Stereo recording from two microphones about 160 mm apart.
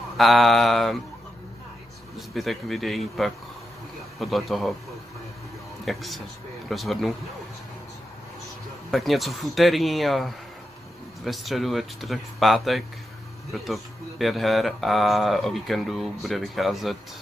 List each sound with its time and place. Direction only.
0.2 s speech: centre (ahead or behind)
2.1 s speech: centre (ahead or behind)
5.9 s speech: centre (ahead or behind)
8.9 s speech: centre (ahead or behind)